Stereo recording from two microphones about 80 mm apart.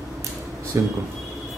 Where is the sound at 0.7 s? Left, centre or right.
Right.